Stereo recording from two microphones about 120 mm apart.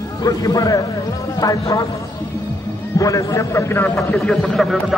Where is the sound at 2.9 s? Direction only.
25° left (ahead or behind).